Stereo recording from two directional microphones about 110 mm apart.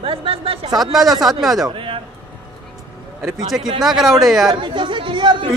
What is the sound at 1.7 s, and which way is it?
Speech, 55° right (ahead or behind).